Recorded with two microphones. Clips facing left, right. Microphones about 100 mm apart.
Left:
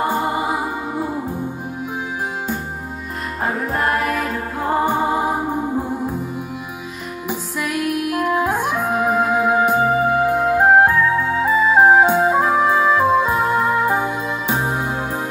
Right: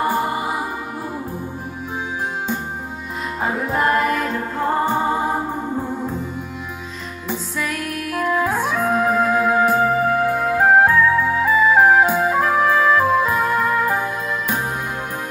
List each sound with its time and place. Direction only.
0.1 s music: 20° left (ahead or behind)
3.6 s music: centre (ahead or behind)
7.2 s music: 10° left (ahead or behind)